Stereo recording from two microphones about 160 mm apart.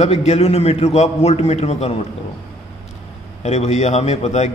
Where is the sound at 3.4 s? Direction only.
45° left (ahead or behind).